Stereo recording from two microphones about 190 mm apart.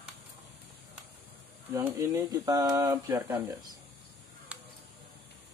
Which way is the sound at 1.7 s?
15° right (ahead or behind).